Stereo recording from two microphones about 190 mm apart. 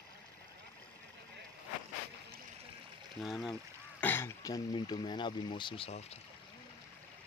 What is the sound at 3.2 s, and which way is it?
Speech, centre (ahead or behind).